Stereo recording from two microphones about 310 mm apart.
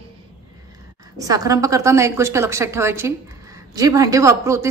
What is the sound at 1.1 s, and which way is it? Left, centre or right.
A woman's voice, centre.